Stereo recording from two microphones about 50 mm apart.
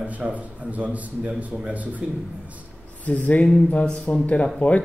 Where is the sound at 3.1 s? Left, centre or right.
Left.